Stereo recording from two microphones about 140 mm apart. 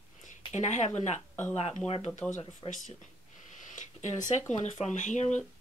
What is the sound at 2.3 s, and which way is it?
Speech, 60° left (ahead or behind).